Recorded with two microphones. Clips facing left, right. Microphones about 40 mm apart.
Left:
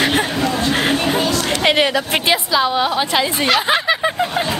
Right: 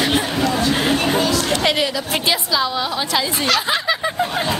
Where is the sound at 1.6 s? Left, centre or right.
Left.